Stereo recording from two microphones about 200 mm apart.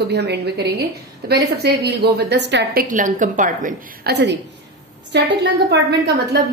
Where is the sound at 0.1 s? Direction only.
55° right (ahead or behind).